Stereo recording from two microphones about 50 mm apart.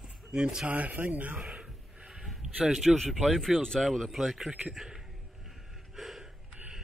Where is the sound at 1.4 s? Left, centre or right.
Right.